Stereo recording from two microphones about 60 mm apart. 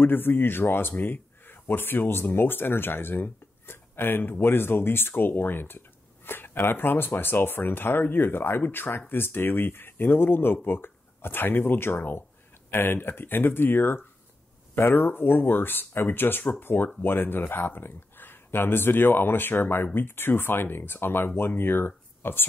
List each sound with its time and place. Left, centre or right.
0.0 s speech: left